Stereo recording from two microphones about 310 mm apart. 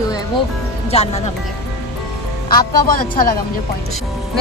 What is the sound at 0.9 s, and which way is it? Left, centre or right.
Speech, left.